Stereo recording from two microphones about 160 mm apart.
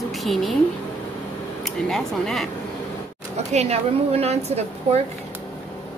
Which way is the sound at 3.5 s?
40° right (ahead or behind).